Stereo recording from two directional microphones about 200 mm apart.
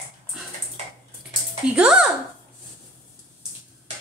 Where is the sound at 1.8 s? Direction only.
5° right (ahead or behind).